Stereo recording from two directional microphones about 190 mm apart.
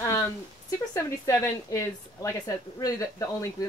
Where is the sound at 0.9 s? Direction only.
15° left (ahead or behind).